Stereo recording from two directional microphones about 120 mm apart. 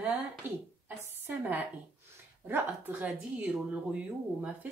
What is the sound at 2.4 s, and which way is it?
A woman's voice, 15° right (ahead or behind).